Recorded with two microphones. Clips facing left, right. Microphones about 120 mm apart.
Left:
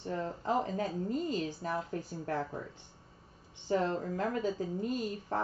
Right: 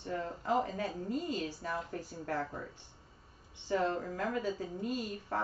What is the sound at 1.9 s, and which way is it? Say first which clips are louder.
Speech: left 2 dB; 35° left (ahead or behind).